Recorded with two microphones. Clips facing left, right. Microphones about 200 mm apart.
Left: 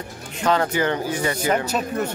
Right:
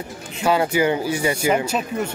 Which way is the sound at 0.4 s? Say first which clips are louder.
Right 2 dB; 10° right (ahead or behind).